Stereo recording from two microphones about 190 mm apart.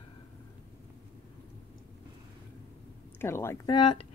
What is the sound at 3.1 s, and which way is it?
Speech, 15° left (ahead or behind).